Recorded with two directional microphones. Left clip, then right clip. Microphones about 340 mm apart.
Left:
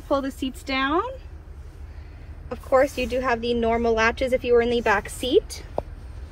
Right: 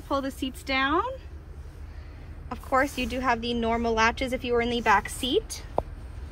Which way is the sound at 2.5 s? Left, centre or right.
Centre.